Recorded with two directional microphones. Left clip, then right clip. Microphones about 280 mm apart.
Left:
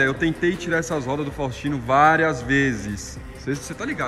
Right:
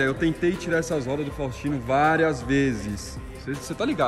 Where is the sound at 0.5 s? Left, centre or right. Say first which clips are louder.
Left 2 dB; centre.